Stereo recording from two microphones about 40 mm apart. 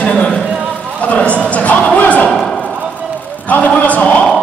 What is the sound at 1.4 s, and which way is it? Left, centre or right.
Music, left.